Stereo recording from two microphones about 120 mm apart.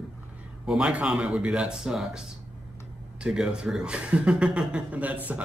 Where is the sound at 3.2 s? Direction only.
5° right (ahead or behind).